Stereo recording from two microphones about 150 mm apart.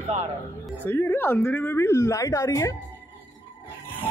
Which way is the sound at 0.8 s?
15° left (ahead or behind).